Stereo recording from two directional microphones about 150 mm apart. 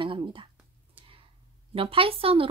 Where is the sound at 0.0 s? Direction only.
35° right (ahead or behind).